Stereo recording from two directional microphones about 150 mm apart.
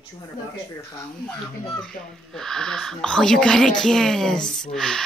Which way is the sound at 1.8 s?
5° left (ahead or behind).